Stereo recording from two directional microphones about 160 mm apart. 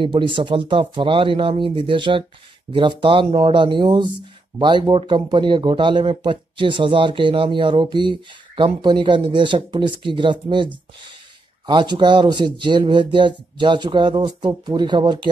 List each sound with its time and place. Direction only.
0.0 s speech: 30° right (ahead or behind)